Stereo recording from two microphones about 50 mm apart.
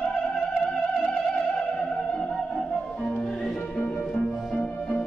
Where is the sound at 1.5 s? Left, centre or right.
Centre.